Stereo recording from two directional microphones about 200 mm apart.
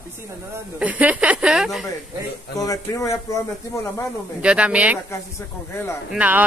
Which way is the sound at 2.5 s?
15° left (ahead or behind).